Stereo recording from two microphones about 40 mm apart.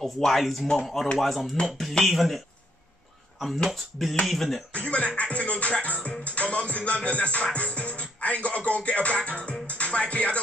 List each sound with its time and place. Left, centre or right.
0.0 s speech: centre
3.7 s speech: centre
4.7 s music: left